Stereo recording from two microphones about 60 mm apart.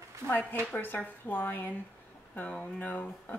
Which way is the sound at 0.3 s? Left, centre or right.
Left.